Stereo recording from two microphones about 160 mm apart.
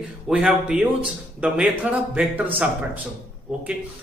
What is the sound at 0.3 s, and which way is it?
Speech, 5° right (ahead or behind).